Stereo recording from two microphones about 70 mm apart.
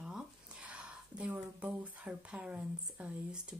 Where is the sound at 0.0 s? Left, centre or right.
Centre.